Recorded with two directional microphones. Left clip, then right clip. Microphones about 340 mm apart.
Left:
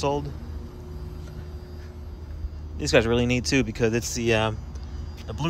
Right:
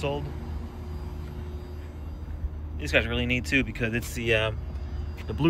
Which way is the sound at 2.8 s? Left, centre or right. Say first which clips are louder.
Left 5 dB; centre.